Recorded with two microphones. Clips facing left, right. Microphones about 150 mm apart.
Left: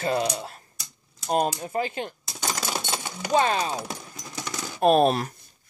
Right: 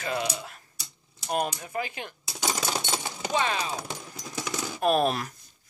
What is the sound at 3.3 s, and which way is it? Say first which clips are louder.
Speech: left 6 dB; 40° left (ahead or behind).